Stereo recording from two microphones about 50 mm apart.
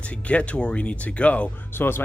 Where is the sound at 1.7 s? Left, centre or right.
Left.